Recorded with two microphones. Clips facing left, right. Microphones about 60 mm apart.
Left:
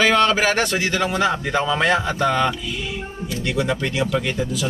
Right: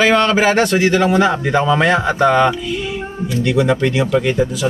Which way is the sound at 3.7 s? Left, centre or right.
Right.